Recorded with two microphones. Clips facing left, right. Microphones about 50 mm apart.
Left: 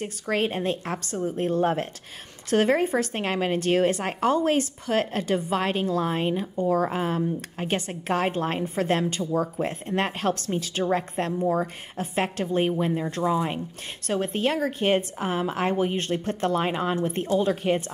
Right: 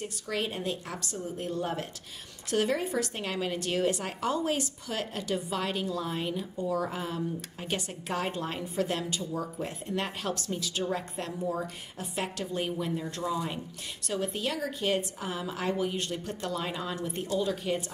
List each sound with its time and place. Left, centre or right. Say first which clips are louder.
0.0 s a woman's voice: left 7 dB; left